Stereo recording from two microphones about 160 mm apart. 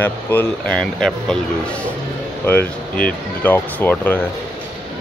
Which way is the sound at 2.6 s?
60° left (ahead or behind).